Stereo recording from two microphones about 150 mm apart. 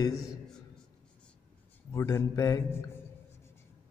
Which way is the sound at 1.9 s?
20° left (ahead or behind).